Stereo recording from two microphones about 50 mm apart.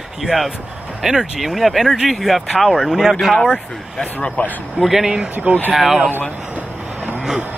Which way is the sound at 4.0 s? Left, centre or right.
Left.